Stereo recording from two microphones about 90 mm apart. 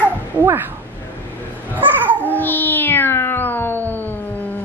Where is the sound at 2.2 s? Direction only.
20° left (ahead or behind).